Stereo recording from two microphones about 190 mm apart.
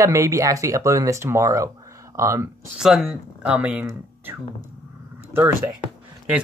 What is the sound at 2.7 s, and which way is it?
Speech, centre (ahead or behind).